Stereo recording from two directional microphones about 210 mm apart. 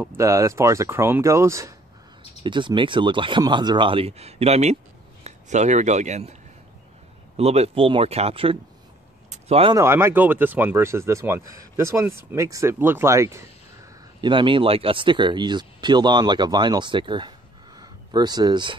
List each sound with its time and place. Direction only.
0.0 s speech: 10° right (ahead or behind); by 6.3 s 35° right (ahead or behind)
7.3 s speech: 30° right (ahead or behind)
9.3 s a sound: 30° right (ahead or behind)
9.8 s speech: 10° right (ahead or behind)